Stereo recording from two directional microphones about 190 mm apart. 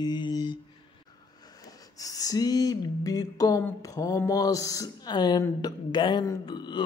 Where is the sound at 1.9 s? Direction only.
20° left (ahead or behind).